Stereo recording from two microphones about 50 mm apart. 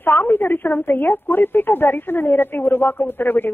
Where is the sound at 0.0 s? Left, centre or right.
Left.